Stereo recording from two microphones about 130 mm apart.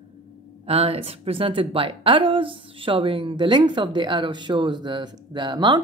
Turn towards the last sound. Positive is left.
turn(degrees=-35)  # may be behind; listen again after turning